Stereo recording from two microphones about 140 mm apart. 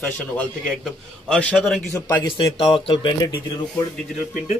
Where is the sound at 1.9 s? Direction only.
20° left (ahead or behind).